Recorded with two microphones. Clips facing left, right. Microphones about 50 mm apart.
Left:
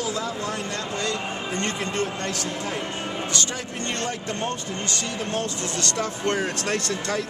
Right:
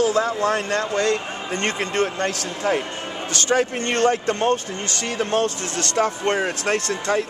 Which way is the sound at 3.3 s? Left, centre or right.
Right.